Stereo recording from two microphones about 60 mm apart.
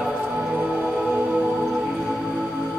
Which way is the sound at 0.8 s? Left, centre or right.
Centre.